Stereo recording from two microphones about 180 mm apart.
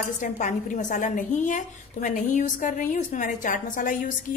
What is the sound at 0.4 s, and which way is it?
A woman's voice, 45° left (ahead or behind).